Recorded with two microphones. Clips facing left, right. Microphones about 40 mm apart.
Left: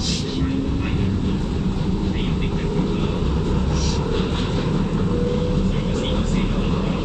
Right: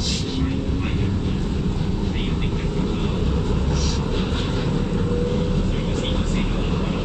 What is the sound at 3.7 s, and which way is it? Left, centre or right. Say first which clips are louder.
Vehicle: left 1 dB; centre.